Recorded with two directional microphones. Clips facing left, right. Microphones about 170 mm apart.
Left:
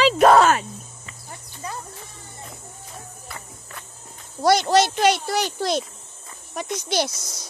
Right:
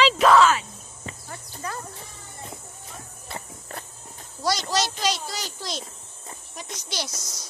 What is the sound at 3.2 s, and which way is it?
Walk, 30° right (ahead or behind).